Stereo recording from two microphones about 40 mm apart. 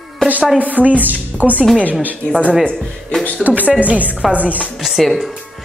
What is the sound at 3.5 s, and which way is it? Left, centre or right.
Speech, right.